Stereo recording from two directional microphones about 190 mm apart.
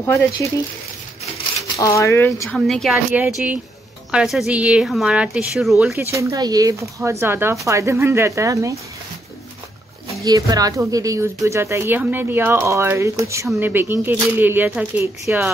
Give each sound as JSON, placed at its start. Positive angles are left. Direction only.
{"t": 0.0, "sound": "speech", "side_deg": 15}
{"t": 1.8, "sound": "speech", "side_deg": 15}
{"t": 2.4, "sound": "a woman's voice", "side_deg": 0}
{"t": 5.9, "sound": "speech", "side_deg": -15}
{"t": 10.2, "sound": "speech", "side_deg": -20}